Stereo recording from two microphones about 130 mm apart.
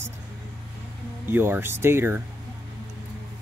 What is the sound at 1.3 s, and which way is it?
Speech, 15° right (ahead or behind).